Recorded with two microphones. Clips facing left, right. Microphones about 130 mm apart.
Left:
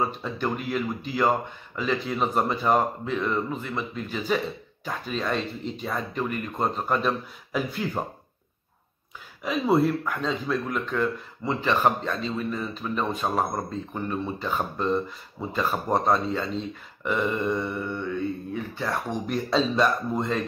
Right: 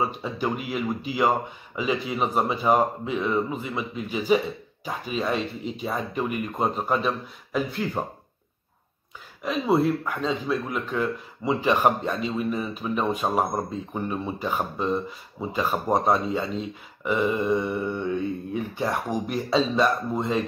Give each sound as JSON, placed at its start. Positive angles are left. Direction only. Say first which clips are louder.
{"t": 0.0, "sound": "speech", "louder": "right 1 dB", "side_deg": -10}
{"t": 9.4, "sound": "speech", "louder": "even", "side_deg": 0}
{"t": 17.6, "sound": "speech", "louder": "right 3 dB", "side_deg": -15}
{"t": 19.2, "sound": "speech", "louder": "even", "side_deg": -5}